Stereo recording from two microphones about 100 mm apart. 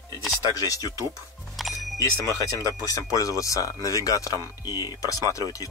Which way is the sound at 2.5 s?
35° left (ahead or behind).